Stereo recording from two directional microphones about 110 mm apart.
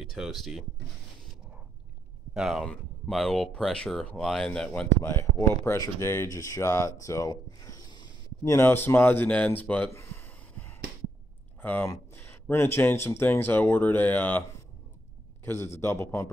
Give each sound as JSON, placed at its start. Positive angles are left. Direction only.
{"t": 0.1, "sound": "speech", "side_deg": 0}
{"t": 2.3, "sound": "speech", "side_deg": -5}
{"t": 5.0, "sound": "speech", "side_deg": 25}
{"t": 7.0, "sound": "a sound", "side_deg": 30}
{"t": 8.5, "sound": "speech", "side_deg": 20}
{"t": 9.8, "sound": "a sound", "side_deg": 20}
{"t": 11.6, "sound": "speech", "side_deg": 15}
{"t": 15.4, "sound": "speech", "side_deg": 20}